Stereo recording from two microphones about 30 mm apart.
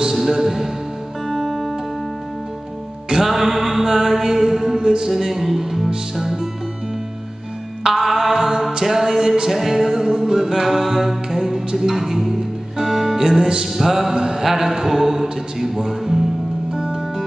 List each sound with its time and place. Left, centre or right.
0.1 s speech: centre
1.3 s music: centre
3.2 s mantra: centre
4.7 s music: right
5.1 s mantra: centre
7.8 s music: centre
8.8 s mantra: centre
9.5 s music: centre
13.7 s mantra: centre
16.7 s music: centre